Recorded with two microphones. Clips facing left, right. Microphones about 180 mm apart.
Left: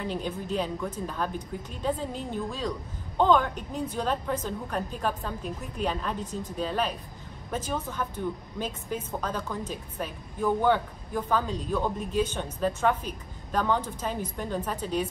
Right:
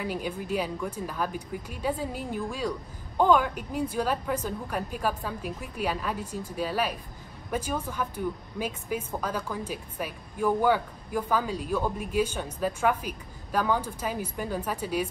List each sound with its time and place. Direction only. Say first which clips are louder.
0.0 s a woman's voice: even; 10° right (ahead or behind)